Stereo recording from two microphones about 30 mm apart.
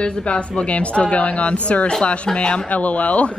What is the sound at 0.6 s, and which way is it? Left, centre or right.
Speech, left.